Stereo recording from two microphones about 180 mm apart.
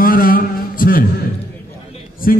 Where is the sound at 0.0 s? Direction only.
50° left (ahead or behind).